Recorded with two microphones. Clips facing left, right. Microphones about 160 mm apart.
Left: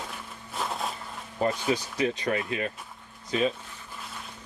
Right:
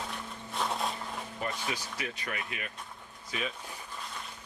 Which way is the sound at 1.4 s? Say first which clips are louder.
Left 11 dB; 30° left (ahead or behind).